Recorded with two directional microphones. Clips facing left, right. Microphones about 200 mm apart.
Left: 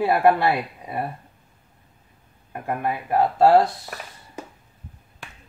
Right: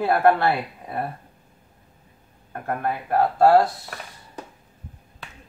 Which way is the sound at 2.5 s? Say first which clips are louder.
Even; 10° left (ahead or behind).